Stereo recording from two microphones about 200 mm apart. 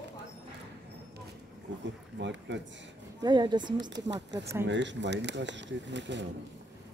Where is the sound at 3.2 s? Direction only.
20° right (ahead or behind).